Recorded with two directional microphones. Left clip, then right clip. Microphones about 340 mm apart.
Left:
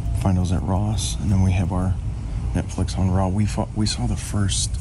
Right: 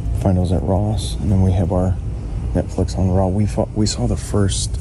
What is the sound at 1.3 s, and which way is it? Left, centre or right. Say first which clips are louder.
Speech: right 7 dB; left.